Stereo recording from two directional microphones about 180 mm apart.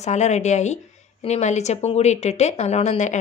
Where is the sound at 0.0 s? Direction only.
40° left (ahead or behind).